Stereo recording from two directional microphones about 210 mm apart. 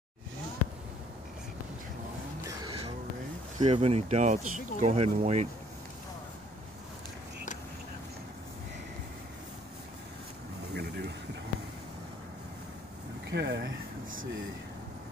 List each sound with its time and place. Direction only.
2.4 s caw: 20° right (ahead or behind)
3.5 s speech: 30° right (ahead or behind)
10.7 s vehicle: 50° right (ahead or behind)
13.3 s a sound: 55° right (ahead or behind)